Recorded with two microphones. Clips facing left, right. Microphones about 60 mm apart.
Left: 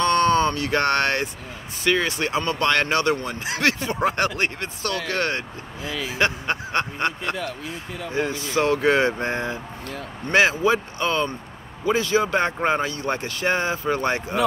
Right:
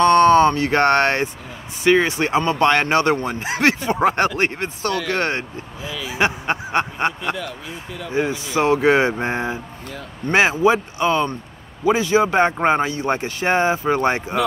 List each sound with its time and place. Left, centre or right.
0.0 s speech: right